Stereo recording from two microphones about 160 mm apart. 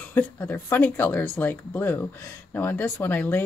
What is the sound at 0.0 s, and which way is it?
Speech, 10° left (ahead or behind).